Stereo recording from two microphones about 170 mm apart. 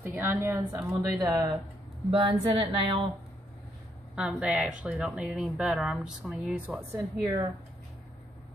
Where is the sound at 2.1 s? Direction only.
35° right (ahead or behind).